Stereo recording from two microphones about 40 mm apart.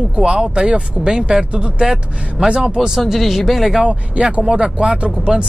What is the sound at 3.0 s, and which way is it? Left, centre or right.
Speech, centre.